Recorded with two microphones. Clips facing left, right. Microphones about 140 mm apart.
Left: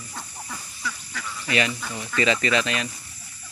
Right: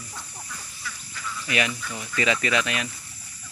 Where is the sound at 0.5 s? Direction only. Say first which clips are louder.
Left 5 dB; 80° left.